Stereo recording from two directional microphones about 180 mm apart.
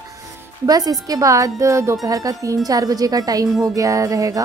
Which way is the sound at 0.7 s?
20° right (ahead or behind).